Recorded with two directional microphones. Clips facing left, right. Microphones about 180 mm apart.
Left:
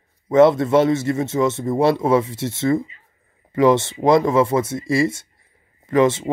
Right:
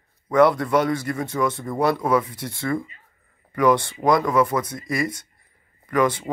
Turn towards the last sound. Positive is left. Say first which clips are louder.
# left 5 dB
turn(degrees=25)  # may be behind; listen again after turning